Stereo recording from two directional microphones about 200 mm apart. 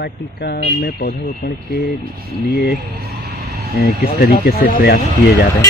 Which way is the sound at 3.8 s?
50° left (ahead or behind).